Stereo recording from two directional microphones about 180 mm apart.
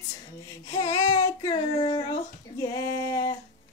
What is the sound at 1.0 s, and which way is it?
A woman's voice, 20° left (ahead or behind).